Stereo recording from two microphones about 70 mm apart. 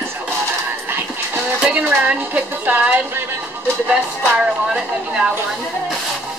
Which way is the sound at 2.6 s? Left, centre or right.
Right.